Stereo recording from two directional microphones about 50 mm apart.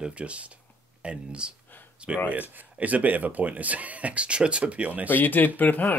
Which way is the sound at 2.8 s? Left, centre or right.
Right.